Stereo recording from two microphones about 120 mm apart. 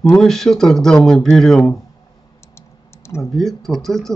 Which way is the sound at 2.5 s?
20° left (ahead or behind).